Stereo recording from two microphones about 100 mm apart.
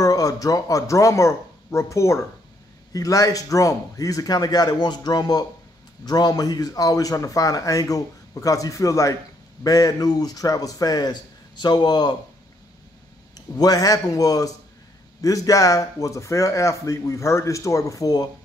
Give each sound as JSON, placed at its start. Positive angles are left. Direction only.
{"t": 0.0, "sound": "a man's voice", "side_deg": 35}
{"t": 13.6, "sound": "a man's voice", "side_deg": 40}